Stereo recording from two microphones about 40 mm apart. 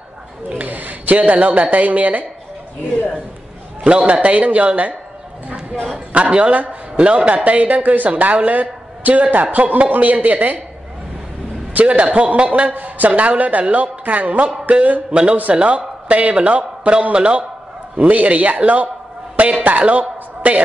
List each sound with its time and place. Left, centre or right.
0.5 s a woman's voice: right
3.8 s a man's voice: right
6.3 s a man's voice: right
7.0 s a man's voice: right
11.7 s a man's voice: right
15.0 s a man's voice: right
17.9 s a man's voice: right
19.9 s a sound: right